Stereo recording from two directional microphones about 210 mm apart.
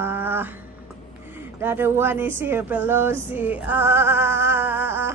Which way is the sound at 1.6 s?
10° right (ahead or behind).